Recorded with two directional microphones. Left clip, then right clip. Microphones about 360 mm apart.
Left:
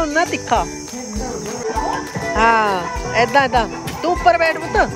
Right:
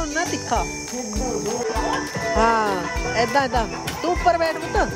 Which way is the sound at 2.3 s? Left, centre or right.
Centre.